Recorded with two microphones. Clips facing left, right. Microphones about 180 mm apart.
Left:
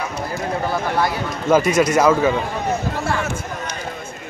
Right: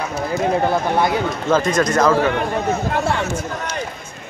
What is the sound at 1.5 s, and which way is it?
Speech, 10° left (ahead or behind).